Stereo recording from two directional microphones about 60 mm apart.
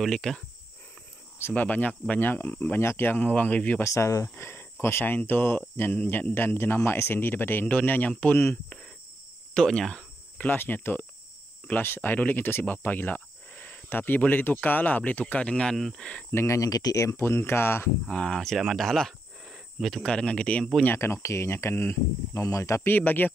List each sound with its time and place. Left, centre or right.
0.0 s speech: centre
1.5 s speech: left
2.8 s speech: left
3.8 s speech: left
9.5 s speech: centre
10.3 s speech: left
16.4 s speech: left
18.0 s speech: centre
19.4 s cricket: centre
19.9 s speech: centre
21.0 s speech: left
22.4 s speech: left
22.8 s speech: left